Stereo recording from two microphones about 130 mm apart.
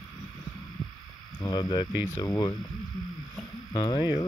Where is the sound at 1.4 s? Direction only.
30° left (ahead or behind).